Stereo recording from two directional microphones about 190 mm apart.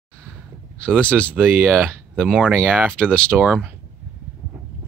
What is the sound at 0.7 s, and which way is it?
Speech, 5° left (ahead or behind).